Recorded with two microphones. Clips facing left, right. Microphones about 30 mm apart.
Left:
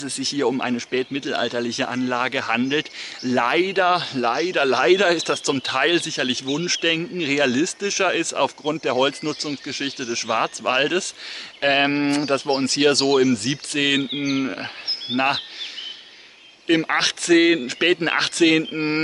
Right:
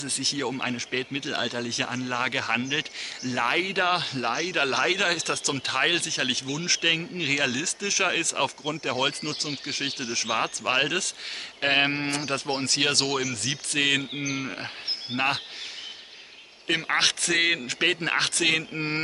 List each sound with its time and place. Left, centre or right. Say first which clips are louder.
0.0 s speech: left 6 dB; centre
14.0 s speech: left 7 dB; left
14.4 s speech: left 6 dB; centre
16.6 s speech: left 5 dB; centre
18.7 s speech: left 6 dB; left